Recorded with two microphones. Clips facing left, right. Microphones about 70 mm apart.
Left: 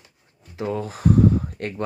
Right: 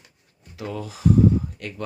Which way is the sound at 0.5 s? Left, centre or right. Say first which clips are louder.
Left 5 dB; left.